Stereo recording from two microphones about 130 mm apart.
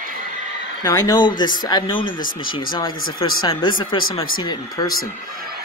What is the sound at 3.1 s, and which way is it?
Speech, 40° left (ahead or behind).